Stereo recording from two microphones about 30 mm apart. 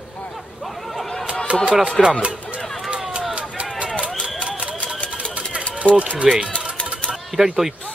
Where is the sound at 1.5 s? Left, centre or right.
Right.